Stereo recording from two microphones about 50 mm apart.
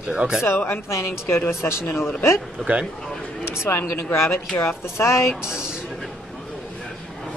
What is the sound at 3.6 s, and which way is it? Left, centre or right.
Speech, left.